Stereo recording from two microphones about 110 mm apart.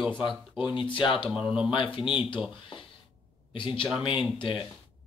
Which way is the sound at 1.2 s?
10° right (ahead or behind).